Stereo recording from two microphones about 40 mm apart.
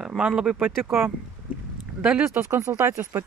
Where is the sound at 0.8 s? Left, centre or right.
Right.